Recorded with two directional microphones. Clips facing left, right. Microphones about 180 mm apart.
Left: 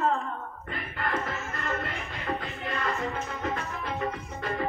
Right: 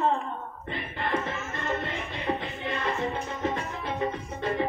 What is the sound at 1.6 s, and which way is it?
Music, 25° right (ahead or behind).